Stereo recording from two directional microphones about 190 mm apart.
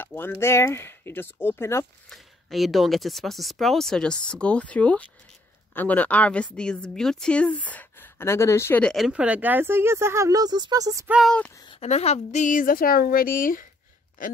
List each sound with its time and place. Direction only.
0.0 s a sound: 10° left (ahead or behind)
0.4 s speech: 15° left (ahead or behind)
2.0 s a woman's voice: centre (ahead or behind); by 11.1 s 15° right (ahead or behind)
11.1 s a woman's voice: 5° left (ahead or behind)
11.5 s speech: 25° left (ahead or behind); by 13.7 s 45° left (ahead or behind)